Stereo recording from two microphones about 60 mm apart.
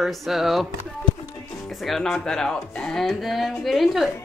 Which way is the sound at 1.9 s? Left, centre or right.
Centre.